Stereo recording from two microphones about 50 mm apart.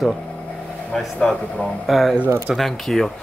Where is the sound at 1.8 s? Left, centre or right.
Centre.